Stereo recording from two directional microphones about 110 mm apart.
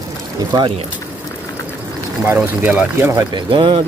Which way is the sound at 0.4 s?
40° right (ahead or behind).